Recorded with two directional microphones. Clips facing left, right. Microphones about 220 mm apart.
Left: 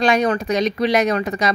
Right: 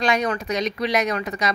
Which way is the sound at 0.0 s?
30° left (ahead or behind).